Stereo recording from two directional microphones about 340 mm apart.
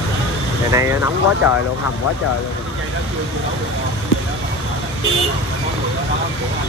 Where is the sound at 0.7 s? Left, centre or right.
Centre.